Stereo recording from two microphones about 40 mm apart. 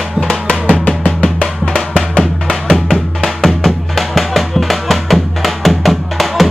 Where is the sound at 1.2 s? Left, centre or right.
Centre.